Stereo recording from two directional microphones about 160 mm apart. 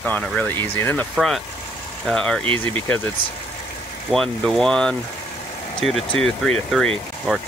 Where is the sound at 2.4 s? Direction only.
35° right (ahead or behind).